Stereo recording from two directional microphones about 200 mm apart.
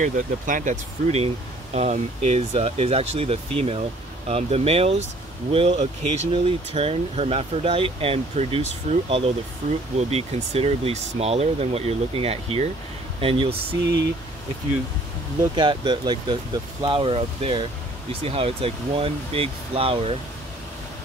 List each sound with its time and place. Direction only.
0.0 s speech: 40° right (ahead or behind)
15.5 s speech: 20° right (ahead or behind)